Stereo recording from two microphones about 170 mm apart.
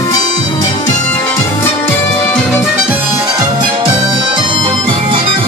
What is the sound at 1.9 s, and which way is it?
Music, 5° left (ahead or behind).